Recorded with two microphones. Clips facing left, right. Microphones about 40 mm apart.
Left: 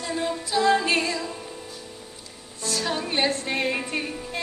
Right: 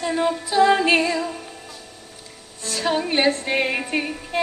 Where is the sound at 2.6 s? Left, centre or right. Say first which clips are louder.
Right 4 dB; right.